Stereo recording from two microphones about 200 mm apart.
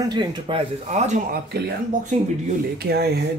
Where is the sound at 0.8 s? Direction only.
35° right (ahead or behind).